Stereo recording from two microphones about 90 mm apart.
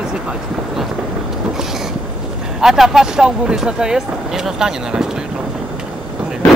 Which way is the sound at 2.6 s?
5° right (ahead or behind).